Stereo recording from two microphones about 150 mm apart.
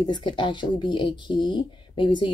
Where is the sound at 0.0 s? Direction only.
30° left (ahead or behind).